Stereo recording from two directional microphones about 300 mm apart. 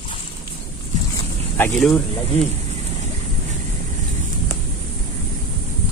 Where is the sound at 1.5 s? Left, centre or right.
Centre.